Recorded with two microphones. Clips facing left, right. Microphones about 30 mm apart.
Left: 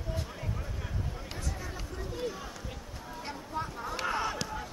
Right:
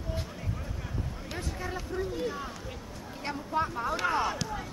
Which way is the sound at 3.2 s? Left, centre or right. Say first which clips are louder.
Right 7 dB; right.